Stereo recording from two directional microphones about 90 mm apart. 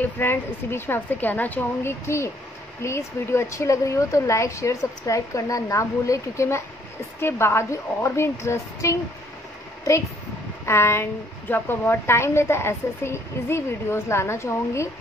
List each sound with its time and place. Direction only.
0.0 s a woman's voice: 25° left (ahead or behind)
10.6 s a woman's voice: 30° left (ahead or behind)